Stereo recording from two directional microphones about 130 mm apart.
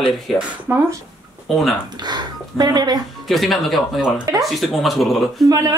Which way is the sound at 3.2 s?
Centre (ahead or behind).